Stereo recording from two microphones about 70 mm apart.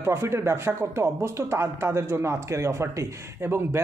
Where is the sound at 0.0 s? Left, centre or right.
Right.